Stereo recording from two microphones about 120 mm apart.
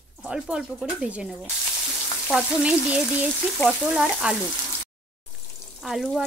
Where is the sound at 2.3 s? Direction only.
10° right (ahead or behind).